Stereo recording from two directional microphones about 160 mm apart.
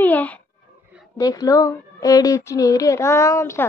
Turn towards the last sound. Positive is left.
turn(degrees=20)  # may be behind; listen again after turning